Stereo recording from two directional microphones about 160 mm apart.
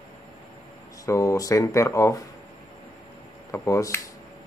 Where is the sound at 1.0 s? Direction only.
20° left (ahead or behind).